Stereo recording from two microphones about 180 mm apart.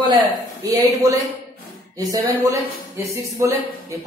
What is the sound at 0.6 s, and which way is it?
Speech, 20° right (ahead or behind).